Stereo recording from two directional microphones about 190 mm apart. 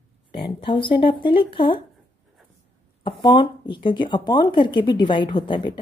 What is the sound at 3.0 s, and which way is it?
Speech, 25° left (ahead or behind).